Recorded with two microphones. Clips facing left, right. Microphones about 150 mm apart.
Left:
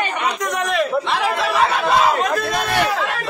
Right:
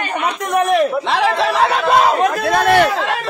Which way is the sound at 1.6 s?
60° right (ahead or behind).